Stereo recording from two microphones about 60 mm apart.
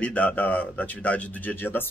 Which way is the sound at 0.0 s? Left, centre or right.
Left.